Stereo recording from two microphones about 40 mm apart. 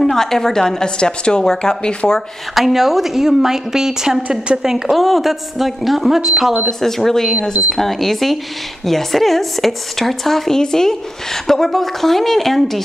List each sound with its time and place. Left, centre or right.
0.0 s speech: centre; by 2.1 s left
2.5 s a woman's voice: centre
4.9 s speech: centre
6.8 s speech: centre